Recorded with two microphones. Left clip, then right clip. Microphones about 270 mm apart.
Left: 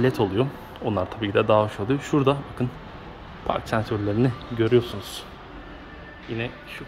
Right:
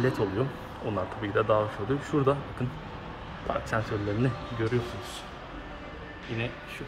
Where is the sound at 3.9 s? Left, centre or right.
Left.